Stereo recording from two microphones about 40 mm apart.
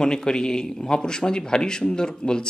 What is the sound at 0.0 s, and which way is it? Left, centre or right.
Speech, centre.